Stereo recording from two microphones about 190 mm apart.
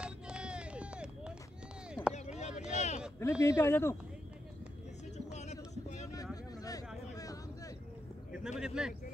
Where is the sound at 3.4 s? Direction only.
15° left (ahead or behind).